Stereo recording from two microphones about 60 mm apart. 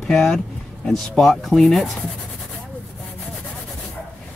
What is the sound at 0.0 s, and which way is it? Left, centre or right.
Speech, centre.